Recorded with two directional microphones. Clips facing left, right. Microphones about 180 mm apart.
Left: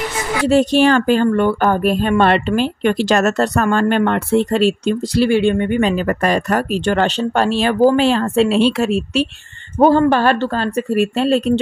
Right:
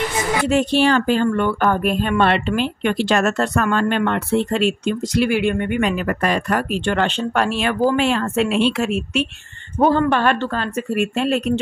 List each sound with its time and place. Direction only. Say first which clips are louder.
0.5 s speech: left 5 dB; 40° left (ahead or behind)